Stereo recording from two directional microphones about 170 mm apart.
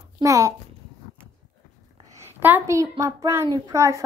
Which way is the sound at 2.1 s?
15° right (ahead or behind).